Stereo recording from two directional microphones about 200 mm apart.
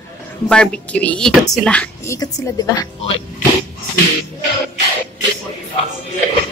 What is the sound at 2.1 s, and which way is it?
Speech, 20° left (ahead or behind).